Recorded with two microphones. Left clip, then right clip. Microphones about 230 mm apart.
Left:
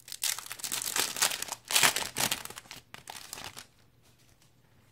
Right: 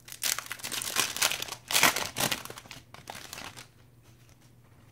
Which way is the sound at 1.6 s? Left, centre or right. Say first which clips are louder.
Right 2 dB; centre.